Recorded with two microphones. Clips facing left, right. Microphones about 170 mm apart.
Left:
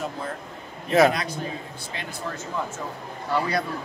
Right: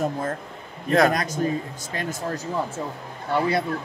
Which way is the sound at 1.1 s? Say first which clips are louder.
Right 6 dB; 45° right (ahead or behind).